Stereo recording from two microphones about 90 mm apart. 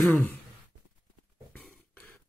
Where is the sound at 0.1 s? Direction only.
20° left (ahead or behind).